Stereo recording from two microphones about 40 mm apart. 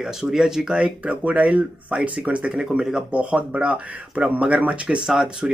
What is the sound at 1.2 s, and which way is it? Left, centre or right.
Speech, right.